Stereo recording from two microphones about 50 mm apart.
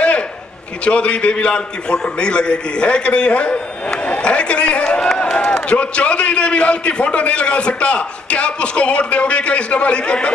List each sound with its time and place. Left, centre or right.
0.8 s a man's voice: left